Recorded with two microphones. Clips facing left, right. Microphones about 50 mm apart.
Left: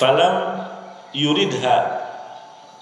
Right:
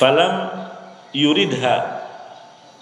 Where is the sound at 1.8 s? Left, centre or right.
Centre.